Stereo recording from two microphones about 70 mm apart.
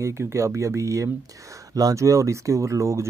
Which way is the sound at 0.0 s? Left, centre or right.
Right.